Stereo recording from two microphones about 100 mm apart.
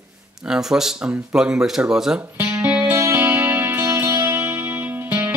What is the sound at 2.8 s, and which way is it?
Music, 25° right (ahead or behind).